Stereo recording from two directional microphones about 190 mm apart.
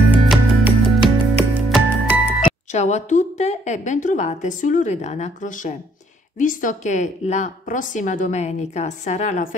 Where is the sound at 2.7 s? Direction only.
40° left (ahead or behind).